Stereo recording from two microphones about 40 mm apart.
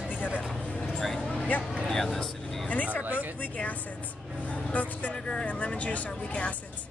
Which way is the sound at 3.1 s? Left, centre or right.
Right.